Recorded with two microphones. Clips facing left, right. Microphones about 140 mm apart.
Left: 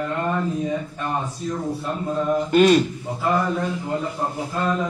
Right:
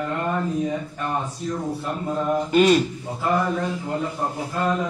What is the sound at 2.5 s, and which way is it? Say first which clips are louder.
Speech: left 2 dB; centre (ahead or behind).